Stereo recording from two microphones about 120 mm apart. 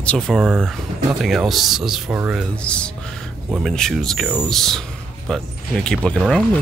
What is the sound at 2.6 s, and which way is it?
Speech, 10° left (ahead or behind).